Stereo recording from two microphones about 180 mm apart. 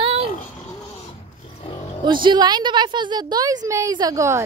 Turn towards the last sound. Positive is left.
turn(degrees=-15)  # may be behind; listen again after turning